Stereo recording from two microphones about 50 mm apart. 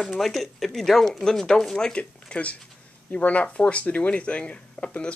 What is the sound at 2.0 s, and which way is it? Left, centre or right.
Speech, left.